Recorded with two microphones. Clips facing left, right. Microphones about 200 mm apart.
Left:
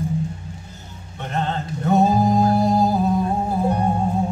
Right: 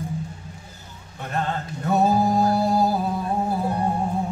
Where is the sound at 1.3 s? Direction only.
25° left (ahead or behind).